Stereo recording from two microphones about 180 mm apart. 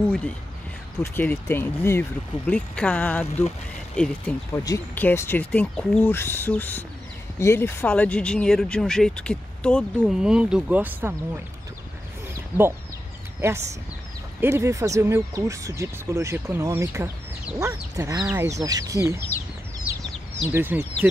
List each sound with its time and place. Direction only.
0.0 s speech: 5° left (ahead or behind); by 11.1 s 10° right (ahead or behind)
13.4 s speech: 15° right (ahead or behind)
20.4 s speech: 10° right (ahead or behind)